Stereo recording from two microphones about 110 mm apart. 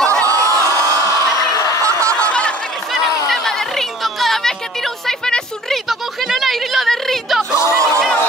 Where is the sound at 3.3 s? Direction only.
5° left (ahead or behind).